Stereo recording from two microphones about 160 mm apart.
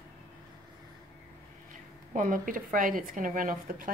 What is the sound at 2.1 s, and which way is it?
A woman's voice, 60° right (ahead or behind).